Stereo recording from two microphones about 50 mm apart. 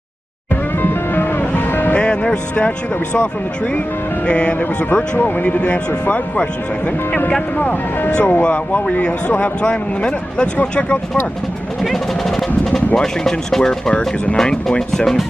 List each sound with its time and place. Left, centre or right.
0.8 s music: left
2.0 s speech: left
4.3 s speech: left
7.5 s speech: left
11.8 s speech: centre